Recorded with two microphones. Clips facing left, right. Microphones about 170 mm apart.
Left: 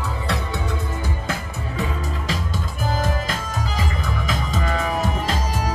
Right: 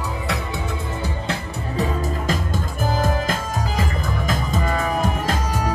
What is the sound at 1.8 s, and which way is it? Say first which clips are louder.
Music: right 4 dB; 45° right (ahead or behind).